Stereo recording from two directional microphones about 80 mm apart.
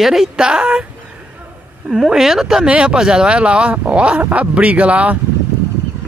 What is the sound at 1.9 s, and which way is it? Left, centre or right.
Speech, centre.